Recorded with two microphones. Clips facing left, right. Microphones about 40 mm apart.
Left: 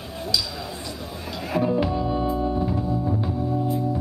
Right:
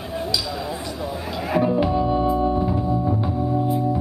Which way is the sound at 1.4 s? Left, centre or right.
Centre.